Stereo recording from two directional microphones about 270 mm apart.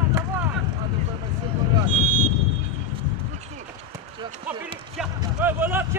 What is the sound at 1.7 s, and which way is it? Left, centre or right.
Vehicle, centre.